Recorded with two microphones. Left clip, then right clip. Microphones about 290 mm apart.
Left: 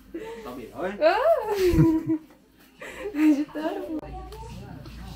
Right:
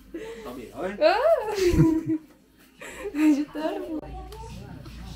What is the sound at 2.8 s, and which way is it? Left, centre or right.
Chuckle, right.